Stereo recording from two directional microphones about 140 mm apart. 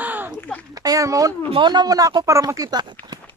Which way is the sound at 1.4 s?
35° right (ahead or behind).